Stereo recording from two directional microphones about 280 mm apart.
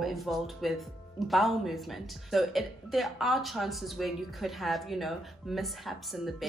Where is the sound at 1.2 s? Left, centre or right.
Centre.